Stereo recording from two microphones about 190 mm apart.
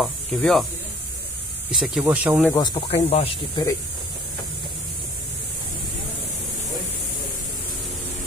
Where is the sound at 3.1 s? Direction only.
30° left (ahead or behind).